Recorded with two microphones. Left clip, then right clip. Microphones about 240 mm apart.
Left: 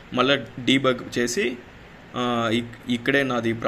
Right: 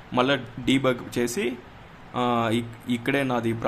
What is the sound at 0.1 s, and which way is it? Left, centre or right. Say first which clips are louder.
A man's voice: left 2 dB; centre.